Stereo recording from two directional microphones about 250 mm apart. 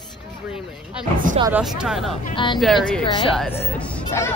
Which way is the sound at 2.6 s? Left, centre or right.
Centre.